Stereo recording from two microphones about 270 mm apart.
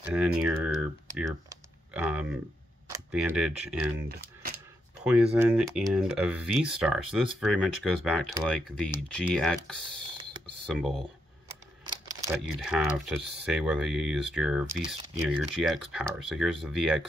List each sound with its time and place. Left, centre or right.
0.0 s speech: centre
1.5 s typing: centre
2.9 s speech: centre
5.0 s speech: centre
10.7 s speech: centre
11.4 s a sound: centre
12.4 s speech: centre